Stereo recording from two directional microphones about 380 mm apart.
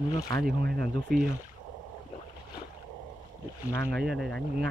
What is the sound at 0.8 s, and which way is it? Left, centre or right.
Speech, centre.